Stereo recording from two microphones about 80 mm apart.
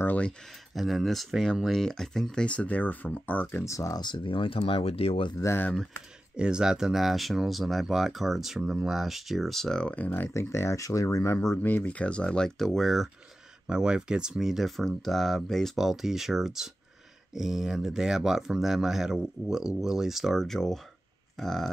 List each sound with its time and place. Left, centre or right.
0.0 s speech: centre
0.7 s speech: centre
2.4 s speech: centre
3.6 s speech: left
4.0 s speech: left
5.4 s speech: left
6.3 s speech: centre; by 10.3 s left
10.3 s speech: left
11.5 s speech: left; by 13.1 s centre
13.7 s speech: centre